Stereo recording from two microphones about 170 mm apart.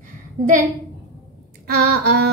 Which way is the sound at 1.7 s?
65° right (ahead or behind).